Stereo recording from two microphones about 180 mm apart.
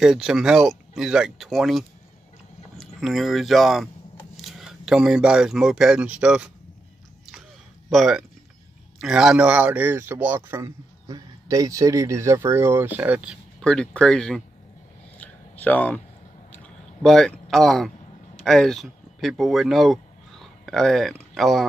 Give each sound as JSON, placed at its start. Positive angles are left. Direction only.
{"t": 0.0, "sound": "speech", "side_deg": -5}
{"t": 7.9, "sound": "speech", "side_deg": 0}
{"t": 15.1, "sound": "a sound", "side_deg": 10}
{"t": 21.4, "sound": "speech", "side_deg": 0}